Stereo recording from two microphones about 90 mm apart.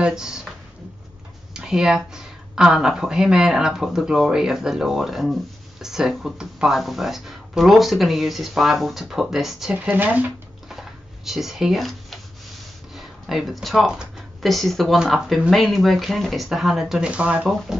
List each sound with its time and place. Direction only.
0.0 s a sound: 5° right (ahead or behind)
1.5 s speech: 5° right (ahead or behind)
9.8 s speech: 20° right (ahead or behind)
10.7 s a sound: 5° right (ahead or behind)
12.9 s speech: 5° right (ahead or behind)
17.5 s speech: centre (ahead or behind)